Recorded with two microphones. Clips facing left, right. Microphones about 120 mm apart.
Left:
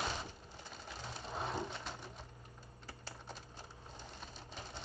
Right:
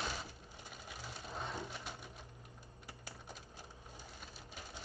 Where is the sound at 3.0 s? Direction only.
15° right (ahead or behind).